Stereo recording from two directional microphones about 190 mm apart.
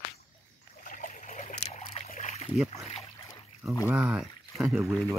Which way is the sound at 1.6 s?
40° left (ahead or behind).